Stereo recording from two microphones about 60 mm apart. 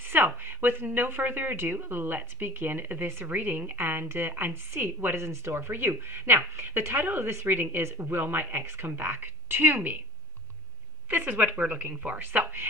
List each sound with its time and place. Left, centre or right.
0.1 s a woman's voice: right
11.1 s a woman's voice: right
12.2 s a woman's voice: right